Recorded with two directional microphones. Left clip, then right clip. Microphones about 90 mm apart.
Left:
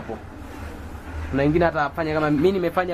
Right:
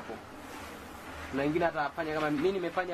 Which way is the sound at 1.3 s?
30° left (ahead or behind).